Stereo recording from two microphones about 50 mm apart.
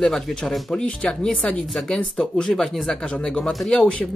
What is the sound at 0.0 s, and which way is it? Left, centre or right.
Speech, centre.